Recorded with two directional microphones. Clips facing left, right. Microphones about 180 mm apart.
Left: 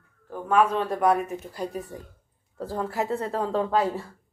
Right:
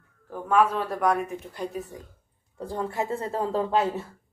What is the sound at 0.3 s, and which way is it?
A man's voice, 5° right (ahead or behind).